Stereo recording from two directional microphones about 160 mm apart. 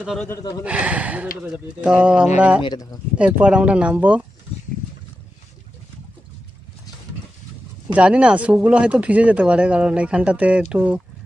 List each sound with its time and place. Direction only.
0.0 s speech: centre (ahead or behind)
0.3 s speech: 25° left (ahead or behind)
0.7 s speech: 10° right (ahead or behind)
2.6 s speech: 25° left (ahead or behind)
3.2 s speech: 10° right (ahead or behind)
7.9 s speech: 5° right (ahead or behind)